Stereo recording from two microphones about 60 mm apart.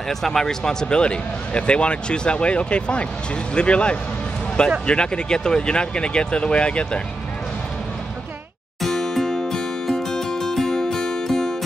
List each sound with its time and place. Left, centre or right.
0.1 s speech: centre
8.8 s music: centre